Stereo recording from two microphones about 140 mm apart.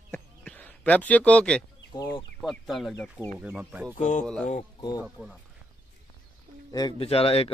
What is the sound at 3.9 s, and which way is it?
Speech, 65° left (ahead or behind).